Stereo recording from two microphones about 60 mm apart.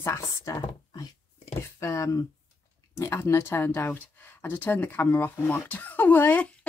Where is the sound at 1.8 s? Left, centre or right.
Left.